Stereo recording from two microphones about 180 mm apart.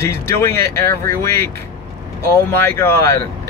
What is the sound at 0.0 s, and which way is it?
Speech, 15° left (ahead or behind).